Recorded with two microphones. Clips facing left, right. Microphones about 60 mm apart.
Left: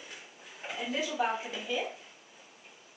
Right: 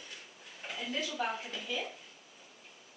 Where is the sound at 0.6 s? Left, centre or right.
Centre.